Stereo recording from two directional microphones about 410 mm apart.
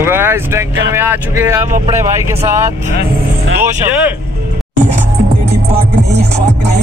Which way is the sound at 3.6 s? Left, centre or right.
Centre.